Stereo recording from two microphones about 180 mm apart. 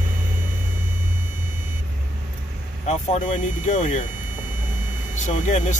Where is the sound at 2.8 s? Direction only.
40° left (ahead or behind).